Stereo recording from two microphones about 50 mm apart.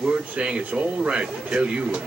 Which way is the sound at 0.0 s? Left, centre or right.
Centre.